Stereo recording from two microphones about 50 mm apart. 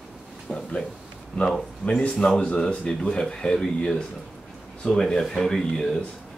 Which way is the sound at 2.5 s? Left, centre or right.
Left.